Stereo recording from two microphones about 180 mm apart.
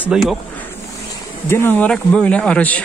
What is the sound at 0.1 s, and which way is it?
Speech, 5° right (ahead or behind).